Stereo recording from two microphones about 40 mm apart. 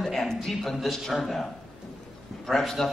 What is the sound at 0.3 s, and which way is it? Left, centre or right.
Speech, centre.